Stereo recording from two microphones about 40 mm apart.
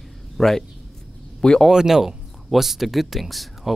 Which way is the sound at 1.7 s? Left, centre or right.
Centre.